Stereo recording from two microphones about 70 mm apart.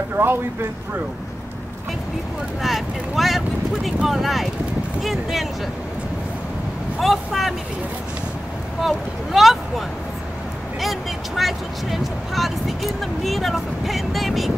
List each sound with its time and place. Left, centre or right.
0.2 s speech: right
2.6 s speech: centre
7.0 s speech: centre
8.8 s speech: centre